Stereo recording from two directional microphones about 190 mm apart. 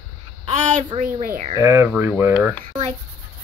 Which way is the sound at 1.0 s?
45° right (ahead or behind).